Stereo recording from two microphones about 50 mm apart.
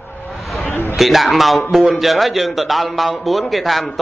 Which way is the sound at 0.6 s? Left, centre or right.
Left.